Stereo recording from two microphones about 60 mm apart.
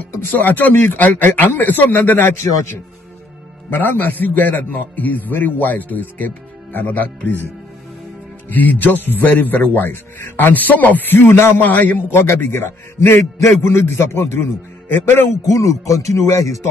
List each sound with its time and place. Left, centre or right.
0.2 s speech: left
3.7 s a man's voice: left
8.5 s speech: left
11.5 s a man's voice: left
12.2 s a man's voice: left
15.4 s speech: left